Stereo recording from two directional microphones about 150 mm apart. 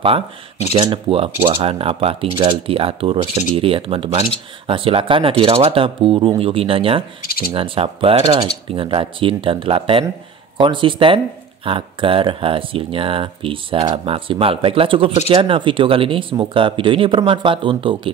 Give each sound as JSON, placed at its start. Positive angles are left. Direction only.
{"t": 0.7, "sound": "speech", "side_deg": -35}
{"t": 7.2, "sound": "speech", "side_deg": 85}
{"t": 7.5, "sound": "speech", "side_deg": -35}
{"t": 8.2, "sound": "speech", "side_deg": -25}
{"t": 8.7, "sound": "speech", "side_deg": -35}